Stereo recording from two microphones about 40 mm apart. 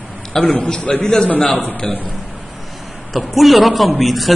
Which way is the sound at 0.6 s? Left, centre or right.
Left.